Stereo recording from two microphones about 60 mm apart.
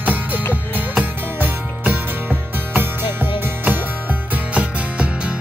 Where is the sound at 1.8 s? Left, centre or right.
Right.